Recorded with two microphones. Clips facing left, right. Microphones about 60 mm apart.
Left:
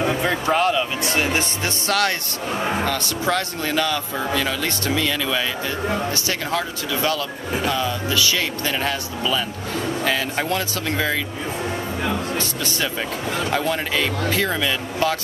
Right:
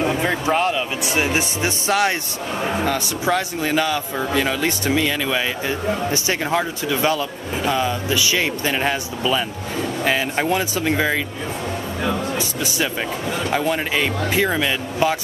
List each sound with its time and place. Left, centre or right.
0.0 s speech: centre
12.4 s speech: centre